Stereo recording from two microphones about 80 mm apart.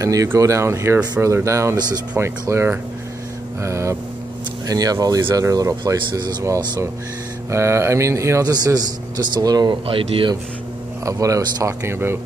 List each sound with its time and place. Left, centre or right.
0.0 s speech: right
4.6 s speech: right
7.5 s speech: right
8.5 s speech: right
11.1 s speech: right